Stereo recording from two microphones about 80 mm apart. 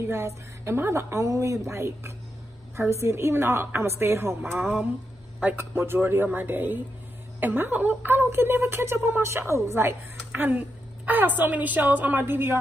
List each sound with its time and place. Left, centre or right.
0.0 s a woman's voice: right
5.8 s a woman's voice: right